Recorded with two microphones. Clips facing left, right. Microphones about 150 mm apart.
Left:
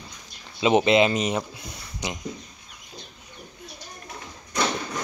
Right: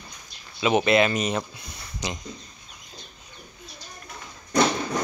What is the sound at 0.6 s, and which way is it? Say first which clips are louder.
Speech: left 2 dB; 20° left (ahead or behind).